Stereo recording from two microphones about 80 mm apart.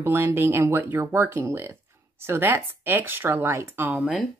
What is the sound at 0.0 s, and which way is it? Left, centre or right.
Speech, right.